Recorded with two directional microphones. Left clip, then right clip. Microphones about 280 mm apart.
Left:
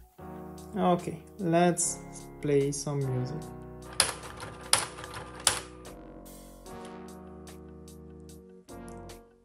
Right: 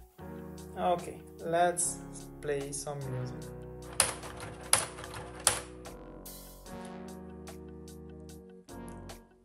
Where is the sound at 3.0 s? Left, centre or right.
Centre.